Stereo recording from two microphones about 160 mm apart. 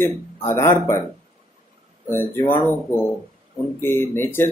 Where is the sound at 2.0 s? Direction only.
15° left (ahead or behind).